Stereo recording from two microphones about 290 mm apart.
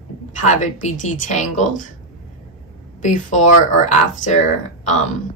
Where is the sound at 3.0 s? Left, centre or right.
Left.